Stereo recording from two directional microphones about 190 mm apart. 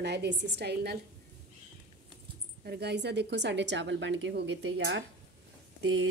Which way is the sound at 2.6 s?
60° right (ahead or behind).